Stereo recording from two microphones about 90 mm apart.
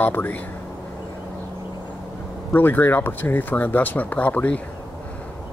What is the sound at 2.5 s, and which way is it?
Speech, 20° left (ahead or behind).